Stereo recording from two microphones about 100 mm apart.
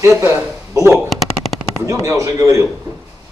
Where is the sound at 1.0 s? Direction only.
Centre (ahead or behind).